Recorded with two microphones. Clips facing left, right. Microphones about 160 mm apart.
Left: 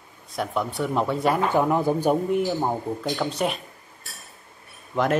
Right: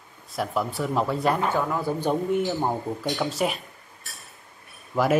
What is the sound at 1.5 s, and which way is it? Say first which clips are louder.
Speech: left 5 dB; 20° left (ahead or behind).